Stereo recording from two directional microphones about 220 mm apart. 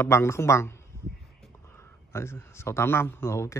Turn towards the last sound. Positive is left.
turn(degrees=10)  # may be behind; listen again after turning